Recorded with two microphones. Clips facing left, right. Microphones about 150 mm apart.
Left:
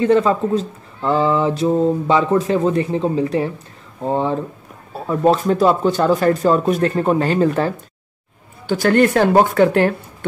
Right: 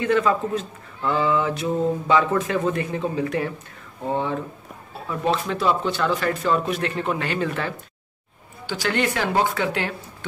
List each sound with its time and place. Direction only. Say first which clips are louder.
0.0 s speech: left 6 dB; 30° left (ahead or behind)
8.6 s speech: left 10 dB; 50° left (ahead or behind)